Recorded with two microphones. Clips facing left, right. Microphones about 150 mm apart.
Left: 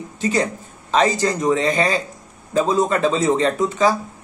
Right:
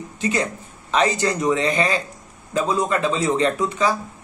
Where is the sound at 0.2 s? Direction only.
40° left (ahead or behind).